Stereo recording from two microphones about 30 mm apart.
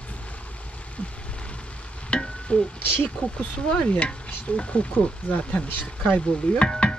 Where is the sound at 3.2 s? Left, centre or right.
Left.